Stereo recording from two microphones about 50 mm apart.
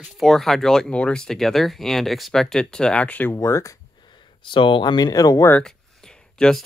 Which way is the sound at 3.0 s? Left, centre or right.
Left.